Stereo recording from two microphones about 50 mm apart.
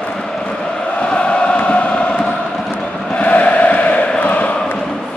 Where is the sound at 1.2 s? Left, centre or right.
Left.